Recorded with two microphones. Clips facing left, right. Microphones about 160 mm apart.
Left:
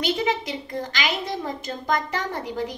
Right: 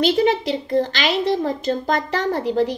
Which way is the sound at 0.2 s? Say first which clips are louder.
Right 7 dB; 35° right (ahead or behind).